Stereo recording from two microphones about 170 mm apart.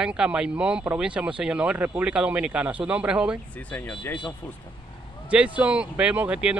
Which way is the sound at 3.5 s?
10° left (ahead or behind).